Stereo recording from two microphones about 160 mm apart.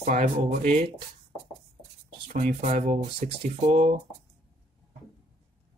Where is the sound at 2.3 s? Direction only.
55° right (ahead or behind).